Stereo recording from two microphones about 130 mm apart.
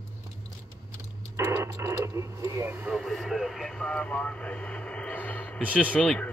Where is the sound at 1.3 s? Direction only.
20° right (ahead or behind).